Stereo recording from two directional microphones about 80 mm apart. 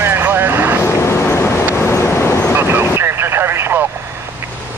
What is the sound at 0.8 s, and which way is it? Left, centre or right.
Vehicle, left.